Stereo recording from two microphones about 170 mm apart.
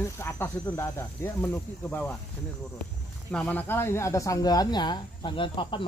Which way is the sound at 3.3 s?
5° left (ahead or behind).